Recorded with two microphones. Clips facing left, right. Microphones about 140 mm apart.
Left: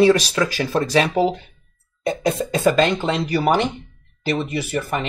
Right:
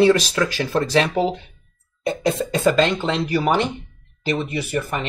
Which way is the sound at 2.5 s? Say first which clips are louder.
Left 1 dB; 15° left (ahead or behind).